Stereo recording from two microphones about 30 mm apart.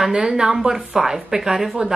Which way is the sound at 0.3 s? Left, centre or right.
Right.